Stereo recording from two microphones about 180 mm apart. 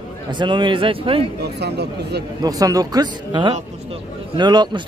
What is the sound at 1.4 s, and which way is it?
Speech, 65° right (ahead or behind).